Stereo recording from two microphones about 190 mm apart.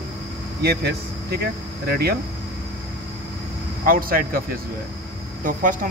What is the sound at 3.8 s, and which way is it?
Speech, 50° right (ahead or behind).